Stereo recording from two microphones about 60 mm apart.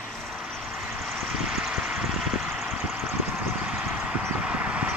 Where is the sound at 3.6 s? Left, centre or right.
Centre.